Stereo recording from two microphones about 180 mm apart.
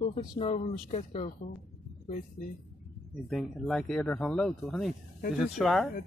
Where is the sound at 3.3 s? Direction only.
Centre (ahead or behind).